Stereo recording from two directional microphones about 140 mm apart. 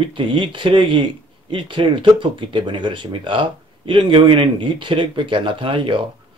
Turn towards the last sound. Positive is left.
turn(degrees=-35)  # may be behind; listen again after turning